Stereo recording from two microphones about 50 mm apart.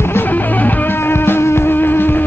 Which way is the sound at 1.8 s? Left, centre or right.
Left.